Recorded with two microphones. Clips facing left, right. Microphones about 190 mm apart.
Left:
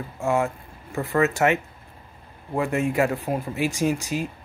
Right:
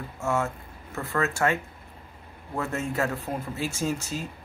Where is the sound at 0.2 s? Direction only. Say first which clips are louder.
Left 4 dB; 15° left (ahead or behind).